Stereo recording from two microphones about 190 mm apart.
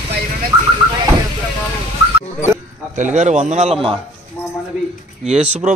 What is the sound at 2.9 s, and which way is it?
A man's voice, 40° right (ahead or behind).